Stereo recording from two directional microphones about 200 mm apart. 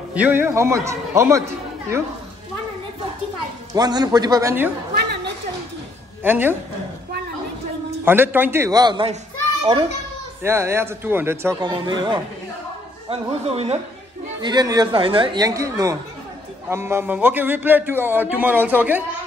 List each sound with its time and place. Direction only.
0.1 s speech: 10° right (ahead or behind)
3.7 s speech: 20° right (ahead or behind)
4.9 s a sound: 55° right (ahead or behind)
6.2 s speech: 10° right (ahead or behind)
8.0 s speech: 10° right (ahead or behind)
10.4 s speech: 10° right (ahead or behind)
11.6 s speech: 25° right (ahead or behind)
14.4 s speech: 20° right (ahead or behind)